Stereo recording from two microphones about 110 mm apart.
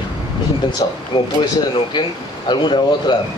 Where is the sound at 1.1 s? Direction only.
50° left (ahead or behind).